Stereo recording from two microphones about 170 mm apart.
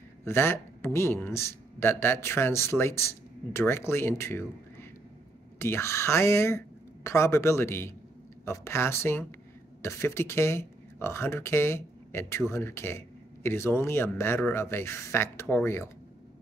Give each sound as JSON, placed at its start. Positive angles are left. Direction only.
{"t": 0.2, "sound": "speech", "side_deg": 15}
{"t": 5.6, "sound": "speech", "side_deg": 15}